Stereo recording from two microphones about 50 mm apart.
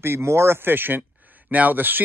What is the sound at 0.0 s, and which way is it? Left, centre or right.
Speech, right.